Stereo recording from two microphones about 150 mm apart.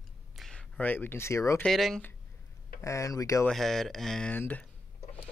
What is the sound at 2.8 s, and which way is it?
Speech, 20° left (ahead or behind).